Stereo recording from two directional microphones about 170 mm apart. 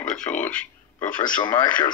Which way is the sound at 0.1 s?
5° left (ahead or behind).